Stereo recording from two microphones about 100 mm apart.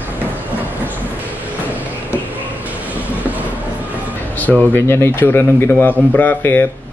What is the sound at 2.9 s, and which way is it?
Train, 15° right (ahead or behind).